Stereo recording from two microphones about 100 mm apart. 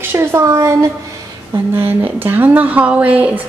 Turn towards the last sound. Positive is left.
turn(degrees=-15)  # may be behind; listen again after turning